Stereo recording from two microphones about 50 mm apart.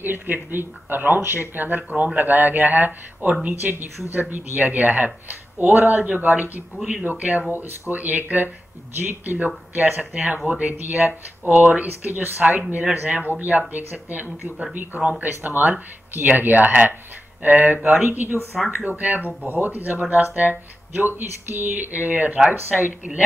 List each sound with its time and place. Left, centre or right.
0.0 s speech: right
10.7 s speech: right
18.5 s speech: centre
18.9 s speech: right